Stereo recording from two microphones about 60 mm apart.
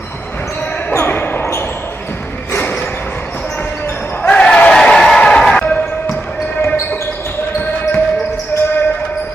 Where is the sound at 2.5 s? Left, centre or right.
Left.